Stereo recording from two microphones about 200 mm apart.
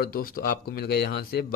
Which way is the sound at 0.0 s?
45° left (ahead or behind).